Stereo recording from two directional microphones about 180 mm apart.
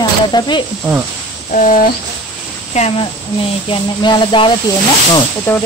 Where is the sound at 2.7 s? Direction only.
40° left (ahead or behind).